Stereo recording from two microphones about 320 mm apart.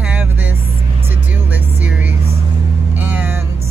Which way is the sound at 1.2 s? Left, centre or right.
Centre.